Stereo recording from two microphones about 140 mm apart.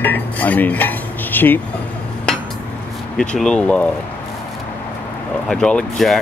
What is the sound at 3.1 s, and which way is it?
Speech, 5° left (ahead or behind).